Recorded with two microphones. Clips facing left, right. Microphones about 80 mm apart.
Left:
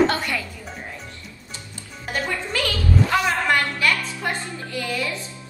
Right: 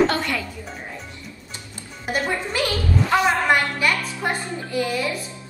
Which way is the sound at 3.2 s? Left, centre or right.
Right.